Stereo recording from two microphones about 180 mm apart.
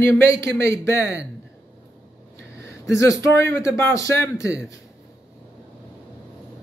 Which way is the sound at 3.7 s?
15° left (ahead or behind).